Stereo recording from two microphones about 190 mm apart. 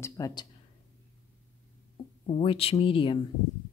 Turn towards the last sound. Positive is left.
turn(degrees=25)  # may be behind; listen again after turning